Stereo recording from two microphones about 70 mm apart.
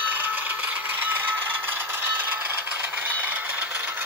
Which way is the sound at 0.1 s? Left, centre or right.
Right.